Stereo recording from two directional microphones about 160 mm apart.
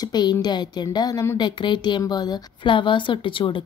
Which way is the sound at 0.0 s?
25° left (ahead or behind).